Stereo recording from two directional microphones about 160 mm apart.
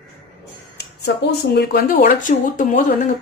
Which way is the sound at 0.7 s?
90° left.